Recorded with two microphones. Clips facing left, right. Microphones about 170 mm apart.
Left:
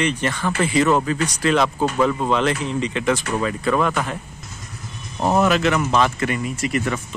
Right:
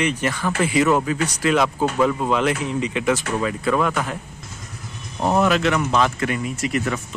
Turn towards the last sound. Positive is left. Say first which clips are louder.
# left 1 dB
turn(degrees=0)  # may be behind; listen again after turning